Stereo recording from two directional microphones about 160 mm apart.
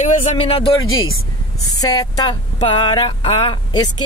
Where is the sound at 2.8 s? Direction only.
35° left (ahead or behind).